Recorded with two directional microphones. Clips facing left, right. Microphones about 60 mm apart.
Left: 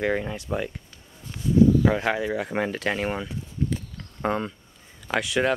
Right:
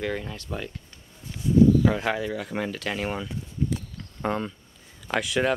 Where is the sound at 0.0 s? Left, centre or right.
Left.